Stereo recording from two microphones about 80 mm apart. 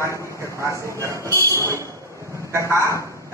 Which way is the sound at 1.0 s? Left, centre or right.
Right.